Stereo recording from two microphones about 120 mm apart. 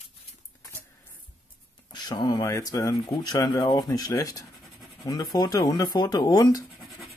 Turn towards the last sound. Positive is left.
turn(degrees=35)  # may be behind; listen again after turning